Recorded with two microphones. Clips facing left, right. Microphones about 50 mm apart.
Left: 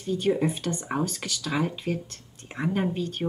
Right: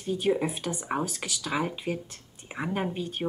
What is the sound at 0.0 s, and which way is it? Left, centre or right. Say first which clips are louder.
Speech: left 2 dB; centre.